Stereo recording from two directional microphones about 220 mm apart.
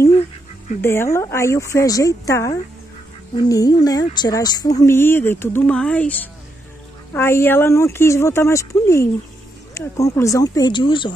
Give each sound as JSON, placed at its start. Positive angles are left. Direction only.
{"t": 0.7, "sound": "speech", "side_deg": 10}